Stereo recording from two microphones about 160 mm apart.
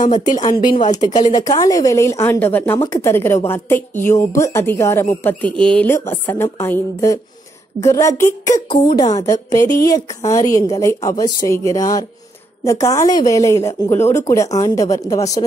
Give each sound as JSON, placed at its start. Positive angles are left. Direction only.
{"t": 0.0, "sound": "speech", "side_deg": 50}
{"t": 0.8, "sound": "a woman's voice", "side_deg": 25}